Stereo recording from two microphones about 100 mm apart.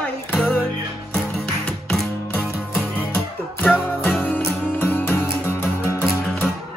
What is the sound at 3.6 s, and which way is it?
Music, 15° left (ahead or behind).